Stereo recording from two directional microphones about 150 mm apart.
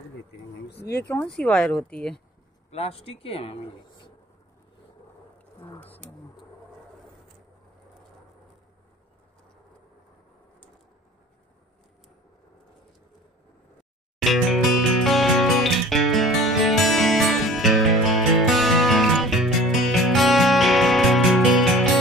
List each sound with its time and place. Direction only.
0.7 s speech: 90° left
1.0 s speech: 10° left (ahead or behind)
2.7 s speech: 40° left (ahead or behind)
5.6 s speech: 15° left (ahead or behind)
14.2 s music: centre (ahead or behind)